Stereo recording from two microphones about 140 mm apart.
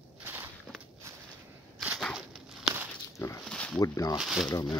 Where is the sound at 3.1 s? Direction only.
20° left (ahead or behind).